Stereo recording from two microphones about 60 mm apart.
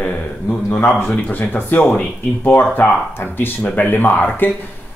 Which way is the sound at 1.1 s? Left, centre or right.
Left.